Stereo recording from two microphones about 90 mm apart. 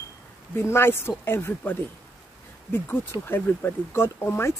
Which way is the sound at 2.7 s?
25° left (ahead or behind).